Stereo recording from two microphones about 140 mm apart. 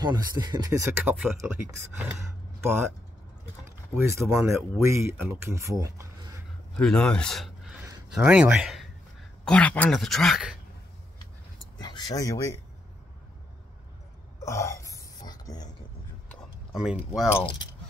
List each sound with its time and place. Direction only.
0.0 s speech: 30° right (ahead or behind)
4.0 s speech: 20° right (ahead or behind)
6.8 s speech: 5° left (ahead or behind)
9.4 s speech: 10° left (ahead or behind)
11.8 s speech: 30° left (ahead or behind)
14.4 s burping: 20° left (ahead or behind)
16.7 s speech: 5° right (ahead or behind)